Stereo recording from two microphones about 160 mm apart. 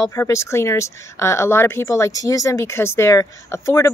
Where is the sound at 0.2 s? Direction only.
15° left (ahead or behind).